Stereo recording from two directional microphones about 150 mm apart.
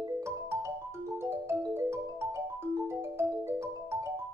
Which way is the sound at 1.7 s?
15° right (ahead or behind).